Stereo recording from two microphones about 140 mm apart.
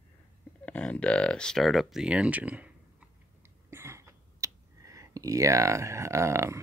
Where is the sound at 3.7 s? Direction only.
20° right (ahead or behind).